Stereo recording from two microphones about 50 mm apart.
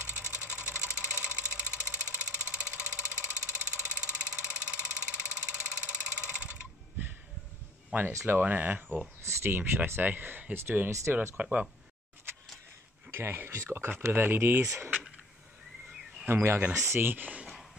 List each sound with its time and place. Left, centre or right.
0.0 s sewing machine: right
7.9 s speech: right
9.2 s speech: right
9.5 s speech: right
12.3 s a sound: right
13.1 s speech: right
14.1 s speech: right
14.6 s speech: right
16.3 s speech: right